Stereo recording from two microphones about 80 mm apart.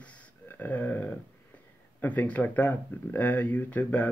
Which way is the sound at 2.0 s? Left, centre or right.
Left.